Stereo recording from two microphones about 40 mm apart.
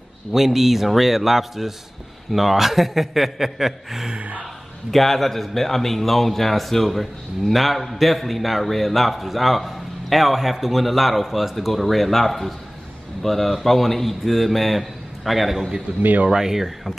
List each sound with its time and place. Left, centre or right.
0.3 s speech: centre
4.2 s a sound: right
4.9 s speech: centre
16.0 s speech: right
16.3 s speech: centre